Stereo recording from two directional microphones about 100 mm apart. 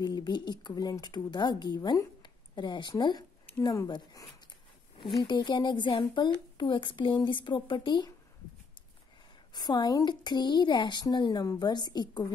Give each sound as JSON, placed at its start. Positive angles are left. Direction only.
{"t": 0.0, "sound": "speech", "side_deg": 45}
{"t": 5.2, "sound": "speech", "side_deg": 50}
{"t": 9.5, "sound": "speech", "side_deg": 45}